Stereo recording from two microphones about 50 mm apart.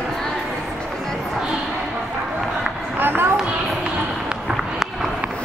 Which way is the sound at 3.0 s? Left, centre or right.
Right.